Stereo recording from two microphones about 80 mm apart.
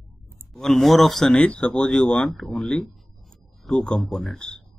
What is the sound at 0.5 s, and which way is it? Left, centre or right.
Speech, centre.